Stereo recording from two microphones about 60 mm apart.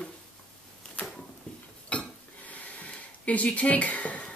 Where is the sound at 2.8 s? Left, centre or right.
Left.